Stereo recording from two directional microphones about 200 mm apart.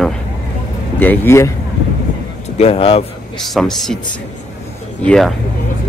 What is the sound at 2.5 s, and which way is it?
Speech, 30° left (ahead or behind).